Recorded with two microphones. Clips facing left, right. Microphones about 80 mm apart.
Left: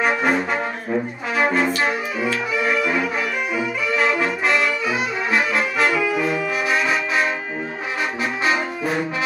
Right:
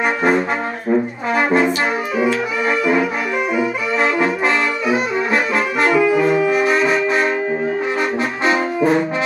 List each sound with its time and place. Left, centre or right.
0.0 s brass instrument: centre
2.6 s brass instrument: centre
3.9 s brass instrument: right
5.9 s saxophone: right